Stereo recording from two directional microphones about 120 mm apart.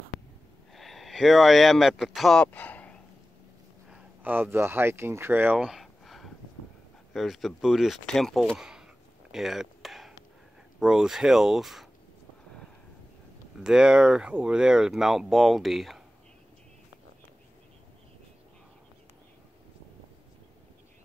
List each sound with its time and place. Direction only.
0.7 s speech: centre (ahead or behind)
4.2 s speech: 15° right (ahead or behind)
5.7 s a sound: centre (ahead or behind)
7.2 s speech: centre (ahead or behind)
9.3 s chop: centre (ahead or behind)
10.8 s speech: 5° right (ahead or behind)
13.6 s speech: 5° right (ahead or behind)